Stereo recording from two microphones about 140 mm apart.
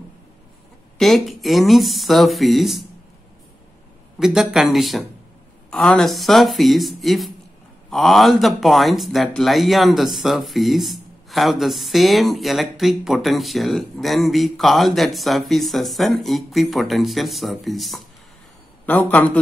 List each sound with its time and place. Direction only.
0.9 s speech: centre (ahead or behind)
4.2 s speech: 5° right (ahead or behind)
18.9 s a man's voice: 10° left (ahead or behind)